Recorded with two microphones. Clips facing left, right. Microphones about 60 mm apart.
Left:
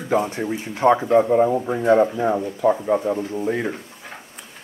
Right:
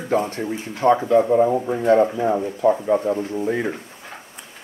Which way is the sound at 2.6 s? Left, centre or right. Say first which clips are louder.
Right 1 dB; centre.